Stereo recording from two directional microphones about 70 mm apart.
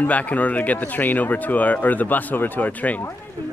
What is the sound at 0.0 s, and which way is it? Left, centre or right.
Speech, left.